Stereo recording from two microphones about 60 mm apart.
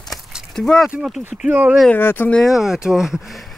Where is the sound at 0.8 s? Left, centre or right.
Right.